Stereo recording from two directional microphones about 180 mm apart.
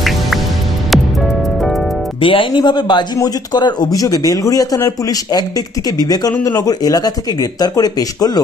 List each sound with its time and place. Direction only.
2.2 s a man's voice: 25° left (ahead or behind)